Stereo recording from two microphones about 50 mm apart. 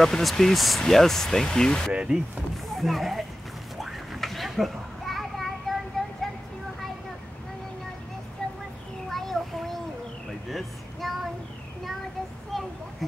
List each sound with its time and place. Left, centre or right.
0.0 s speech: centre
2.0 s speech: right
2.5 s speech: centre
3.8 s children playing: centre
6.0 s music: centre
9.1 s a sound: centre
12.5 s a sound: centre